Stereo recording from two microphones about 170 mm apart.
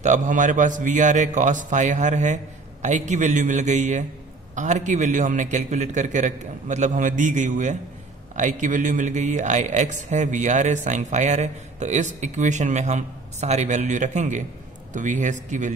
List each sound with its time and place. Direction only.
0.0 s a man's voice: 45° right (ahead or behind)